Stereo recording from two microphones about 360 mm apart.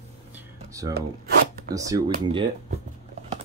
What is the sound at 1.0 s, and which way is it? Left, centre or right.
Zipper, right.